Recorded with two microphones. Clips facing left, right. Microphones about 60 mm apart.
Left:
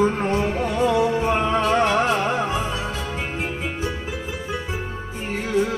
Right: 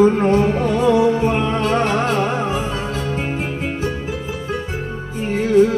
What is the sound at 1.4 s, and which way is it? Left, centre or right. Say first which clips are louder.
Music: right 1 dB; centre.